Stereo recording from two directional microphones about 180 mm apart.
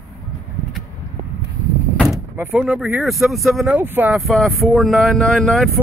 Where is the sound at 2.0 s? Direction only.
10° right (ahead or behind).